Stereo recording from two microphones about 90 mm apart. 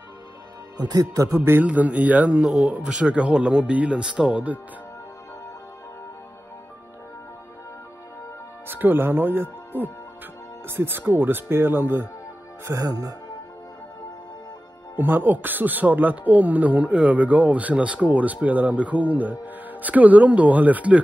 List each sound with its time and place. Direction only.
0.7 s speech: 50° right (ahead or behind)
1.4 s speech: 20° right (ahead or behind)
8.6 s speech: 20° right (ahead or behind)
12.6 s speech: 40° right (ahead or behind)
15.0 s speech: 20° right (ahead or behind)